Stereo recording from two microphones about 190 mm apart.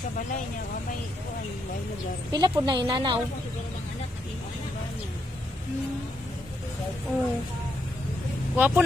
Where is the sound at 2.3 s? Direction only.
25° right (ahead or behind).